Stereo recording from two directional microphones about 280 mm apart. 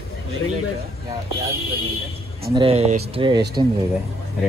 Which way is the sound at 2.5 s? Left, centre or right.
Right.